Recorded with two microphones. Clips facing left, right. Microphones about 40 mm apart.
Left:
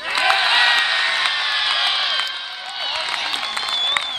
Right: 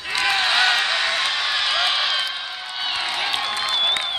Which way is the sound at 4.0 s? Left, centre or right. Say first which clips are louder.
Left 3 dB; left.